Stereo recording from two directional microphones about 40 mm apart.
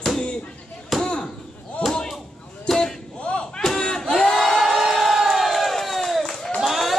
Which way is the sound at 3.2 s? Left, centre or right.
Left.